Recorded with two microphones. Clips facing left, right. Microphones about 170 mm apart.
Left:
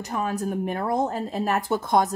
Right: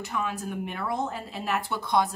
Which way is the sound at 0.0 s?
40° left (ahead or behind).